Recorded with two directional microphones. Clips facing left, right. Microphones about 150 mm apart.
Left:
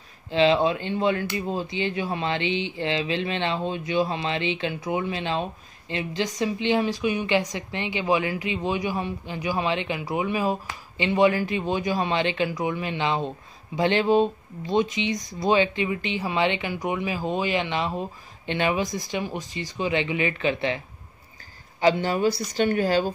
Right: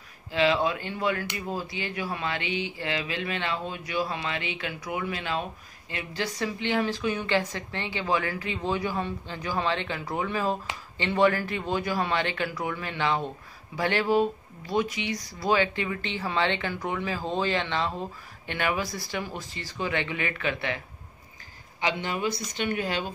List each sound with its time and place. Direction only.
0.3 s speech: 25° left (ahead or behind)
21.7 s speech: 35° left (ahead or behind)